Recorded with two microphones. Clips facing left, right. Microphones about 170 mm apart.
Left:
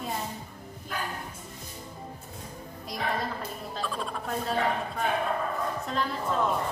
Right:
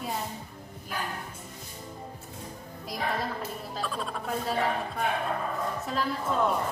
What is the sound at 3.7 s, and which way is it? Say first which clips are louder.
Music: left 1 dB; centre (ahead or behind).